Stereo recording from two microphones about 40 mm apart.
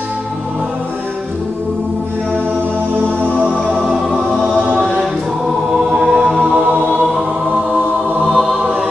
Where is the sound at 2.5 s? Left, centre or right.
Right.